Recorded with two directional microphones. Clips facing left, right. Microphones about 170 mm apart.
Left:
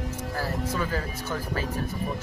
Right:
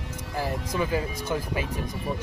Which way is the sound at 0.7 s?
15° right (ahead or behind).